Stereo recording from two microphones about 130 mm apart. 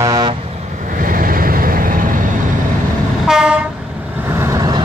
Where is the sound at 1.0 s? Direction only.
90° right.